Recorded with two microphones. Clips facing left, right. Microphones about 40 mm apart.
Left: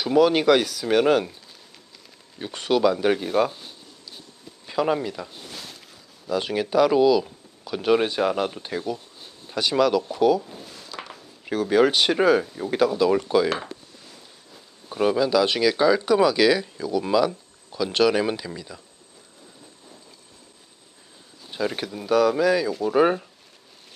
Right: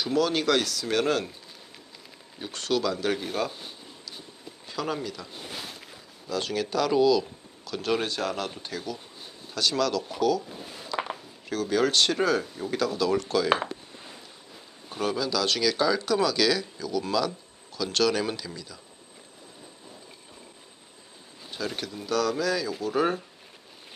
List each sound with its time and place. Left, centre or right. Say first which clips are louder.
0.0 s speech: left 7 dB; centre
2.3 s speech: left 5 dB; centre
4.6 s speech: left 8 dB; centre
5.5 s a sound: right 1 dB; centre
6.2 s speech: left 4 dB; centre
10.8 s a sound: right 8 dB; centre
11.4 s speech: left 6 dB; centre
15.0 s speech: left 8 dB; left
21.5 s speech: left 6 dB; centre